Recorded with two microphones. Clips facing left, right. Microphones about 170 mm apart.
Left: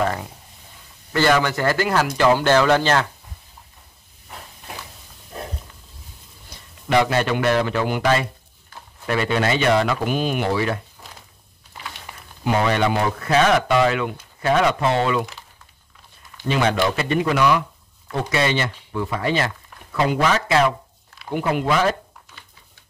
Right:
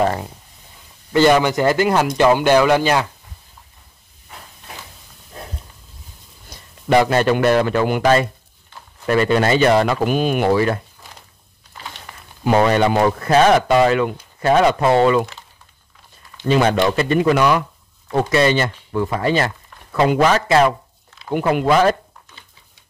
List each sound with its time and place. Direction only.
1.1 s speech: 20° right (ahead or behind)
6.9 s speech: 45° right (ahead or behind)
12.6 s speech: 40° right (ahead or behind)
16.4 s speech: 40° right (ahead or behind)